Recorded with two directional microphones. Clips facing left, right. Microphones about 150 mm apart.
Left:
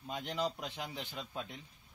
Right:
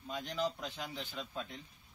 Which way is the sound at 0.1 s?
20° left (ahead or behind).